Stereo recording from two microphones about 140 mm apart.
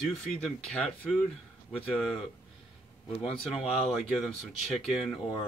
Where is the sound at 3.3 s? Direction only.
45° left (ahead or behind).